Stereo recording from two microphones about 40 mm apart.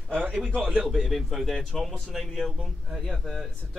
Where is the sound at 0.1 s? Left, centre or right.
Right.